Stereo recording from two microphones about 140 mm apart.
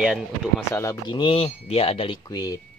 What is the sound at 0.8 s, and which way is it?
Speech, 25° left (ahead or behind).